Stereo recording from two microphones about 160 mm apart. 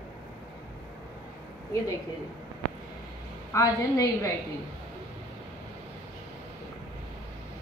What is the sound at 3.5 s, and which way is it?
Speech, 20° left (ahead or behind).